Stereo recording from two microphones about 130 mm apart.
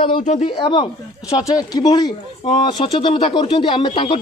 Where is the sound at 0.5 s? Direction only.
40° left (ahead or behind).